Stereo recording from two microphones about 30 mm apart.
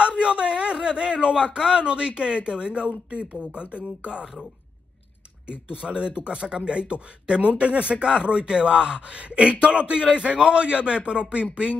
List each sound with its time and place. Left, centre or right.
0.0 s a sound: right
0.8 s speech: right
4.0 s speech: right
5.5 s speech: right
7.4 s speech: right